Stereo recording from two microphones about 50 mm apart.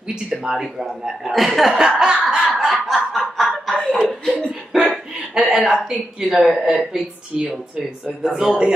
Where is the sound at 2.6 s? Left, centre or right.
Centre.